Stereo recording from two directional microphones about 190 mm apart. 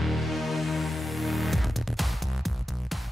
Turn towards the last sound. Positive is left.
turn(degrees=0)  # may be behind; listen again after turning